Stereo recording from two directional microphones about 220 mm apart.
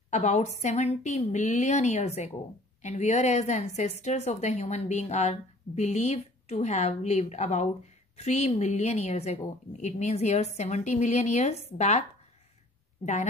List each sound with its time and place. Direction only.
0.1 s a woman's voice: 35° left (ahead or behind)